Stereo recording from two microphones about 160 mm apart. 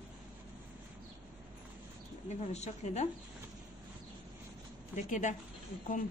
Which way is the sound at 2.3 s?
45° left (ahead or behind).